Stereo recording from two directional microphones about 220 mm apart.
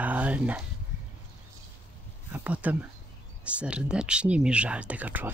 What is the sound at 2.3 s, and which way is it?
Speech, 5° right (ahead or behind).